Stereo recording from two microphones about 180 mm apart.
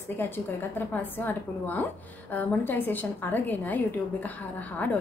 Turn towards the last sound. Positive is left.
turn(degrees=10)  # may be behind; listen again after turning